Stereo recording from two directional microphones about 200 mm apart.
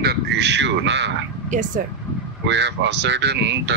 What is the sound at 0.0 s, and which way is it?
A man's voice, 55° right (ahead or behind).